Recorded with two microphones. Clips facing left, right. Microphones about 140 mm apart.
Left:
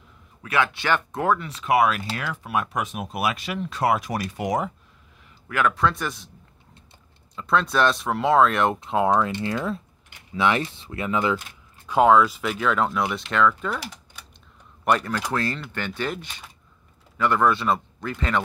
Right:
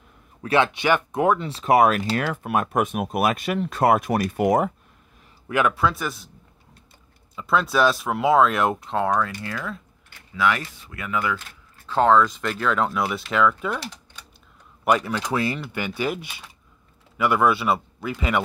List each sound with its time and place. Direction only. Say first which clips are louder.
0.4 s speech: right 4 dB; 30° right (ahead or behind)
0.7 s speech: right 3 dB; 15° right (ahead or behind)
1.4 s speech: right 3 dB; 35° right (ahead or behind); by 4.7 s 55° right (ahead or behind)
5.5 s speech: right 2 dB; 15° right (ahead or behind)
5.8 s speech: even; 5° right (ahead or behind)
7.3 s speech: right 1 dB; 5° right (ahead or behind)
9.1 s speech: left 3 dB; 25° left (ahead or behind); by 13.7 s 5° right (ahead or behind)
13.7 s typing: right 1 dB; 5° left (ahead or behind)
14.9 s speech: right 1 dB; 10° right (ahead or behind)